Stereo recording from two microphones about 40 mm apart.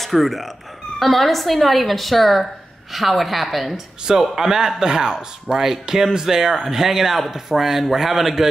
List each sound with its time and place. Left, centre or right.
0.0 s speech: centre